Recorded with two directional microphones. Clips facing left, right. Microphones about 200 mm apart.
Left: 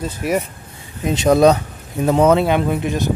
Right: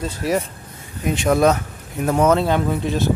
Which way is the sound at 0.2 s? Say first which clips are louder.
Left 1 dB; 15° left (ahead or behind).